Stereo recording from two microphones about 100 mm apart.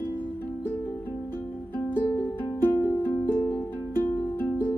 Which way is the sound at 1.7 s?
20° left (ahead or behind).